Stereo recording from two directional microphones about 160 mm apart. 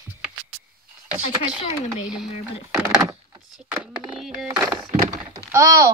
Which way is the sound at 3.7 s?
5° right (ahead or behind).